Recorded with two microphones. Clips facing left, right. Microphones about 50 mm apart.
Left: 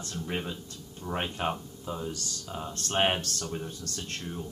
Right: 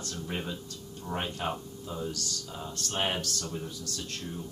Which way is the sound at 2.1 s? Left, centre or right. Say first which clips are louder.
Left 1 dB; left.